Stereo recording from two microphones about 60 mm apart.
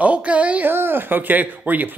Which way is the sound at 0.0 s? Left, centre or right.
Right.